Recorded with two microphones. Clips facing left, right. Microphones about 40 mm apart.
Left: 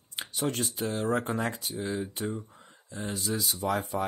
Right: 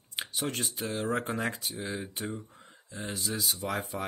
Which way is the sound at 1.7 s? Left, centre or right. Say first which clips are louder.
Left 4 dB; centre.